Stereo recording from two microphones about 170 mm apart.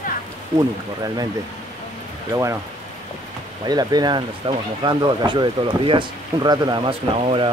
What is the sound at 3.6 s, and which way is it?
Speech, 25° right (ahead or behind).